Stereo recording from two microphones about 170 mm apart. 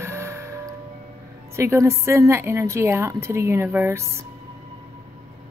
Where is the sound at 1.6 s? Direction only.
15° right (ahead or behind).